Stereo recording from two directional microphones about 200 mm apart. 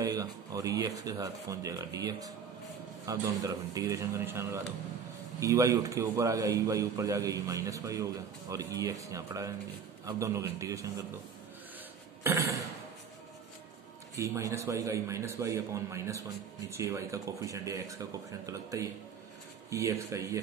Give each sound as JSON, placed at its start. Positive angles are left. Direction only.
{"t": 0.0, "sound": "a man's voice", "side_deg": -15}
{"t": 12.2, "sound": "a sound", "side_deg": -15}
{"t": 14.1, "sound": "a man's voice", "side_deg": -15}